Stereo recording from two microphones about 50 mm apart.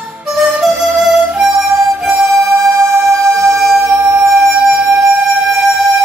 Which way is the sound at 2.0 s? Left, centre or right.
Right.